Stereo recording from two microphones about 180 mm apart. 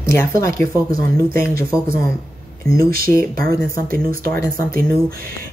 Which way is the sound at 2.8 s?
55° right (ahead or behind).